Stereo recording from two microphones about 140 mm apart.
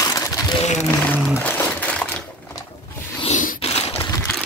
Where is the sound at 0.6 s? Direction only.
55° left (ahead or behind).